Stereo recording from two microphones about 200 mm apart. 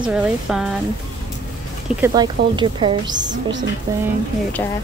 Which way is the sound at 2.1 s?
20° right (ahead or behind).